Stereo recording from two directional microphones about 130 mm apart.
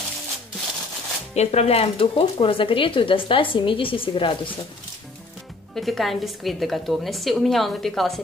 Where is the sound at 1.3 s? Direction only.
55° left (ahead or behind); by 4.4 s 40° left (ahead or behind).